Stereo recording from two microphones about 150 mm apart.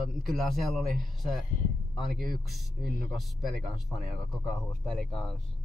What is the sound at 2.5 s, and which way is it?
Speech, centre (ahead or behind).